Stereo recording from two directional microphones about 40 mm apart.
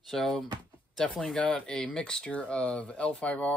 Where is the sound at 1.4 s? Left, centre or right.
Left.